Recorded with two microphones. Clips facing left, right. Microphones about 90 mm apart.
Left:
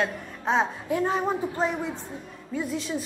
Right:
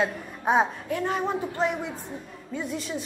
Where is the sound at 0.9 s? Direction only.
20° left (ahead or behind).